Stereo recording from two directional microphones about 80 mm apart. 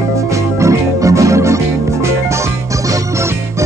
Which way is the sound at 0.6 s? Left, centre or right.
Right.